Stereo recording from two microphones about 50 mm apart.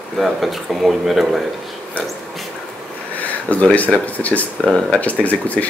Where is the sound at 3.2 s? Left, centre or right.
Left.